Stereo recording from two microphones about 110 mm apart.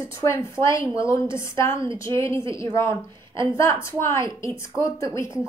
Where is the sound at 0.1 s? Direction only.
25° left (ahead or behind).